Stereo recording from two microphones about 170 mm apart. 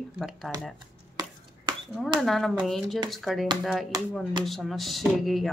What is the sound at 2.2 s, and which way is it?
Speech, centre (ahead or behind).